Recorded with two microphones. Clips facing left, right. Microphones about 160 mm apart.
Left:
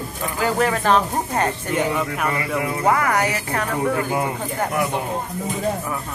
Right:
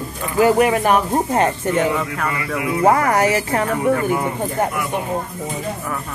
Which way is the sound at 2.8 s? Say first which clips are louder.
Right 5 dB; 30° right (ahead or behind).